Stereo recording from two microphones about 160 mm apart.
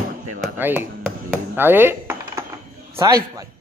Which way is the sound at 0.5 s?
10° right (ahead or behind).